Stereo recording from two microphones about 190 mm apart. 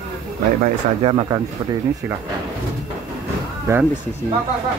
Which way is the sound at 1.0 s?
30° right (ahead or behind).